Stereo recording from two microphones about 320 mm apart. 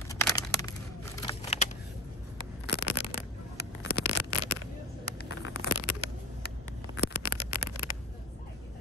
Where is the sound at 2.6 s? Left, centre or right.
Left.